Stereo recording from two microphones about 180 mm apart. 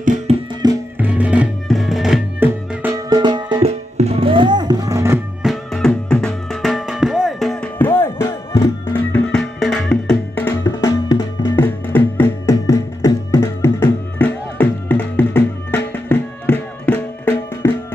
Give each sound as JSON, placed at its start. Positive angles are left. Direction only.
{"t": 0.0, "sound": "music", "side_deg": -45}
{"t": 0.9, "sound": "music", "side_deg": -10}
{"t": 3.1, "sound": "music", "side_deg": -25}
{"t": 5.4, "sound": "music", "side_deg": 0}
{"t": 10.6, "sound": "music", "side_deg": 20}